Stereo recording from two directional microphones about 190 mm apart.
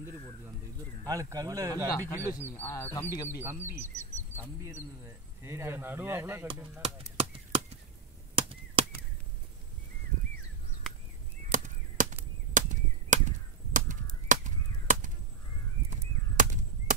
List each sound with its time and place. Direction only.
1.0 s speech: 20° right (ahead or behind)
1.9 s speech: 15° left (ahead or behind)
3.3 s speech: 10° right (ahead or behind)
3.8 s speech: 40° left (ahead or behind)
4.4 s speech: 15° right (ahead or behind)
6.8 s chop: 30° right (ahead or behind)
11.5 s chop: 40° right (ahead or behind)
13.7 s a sound: 40° right (ahead or behind)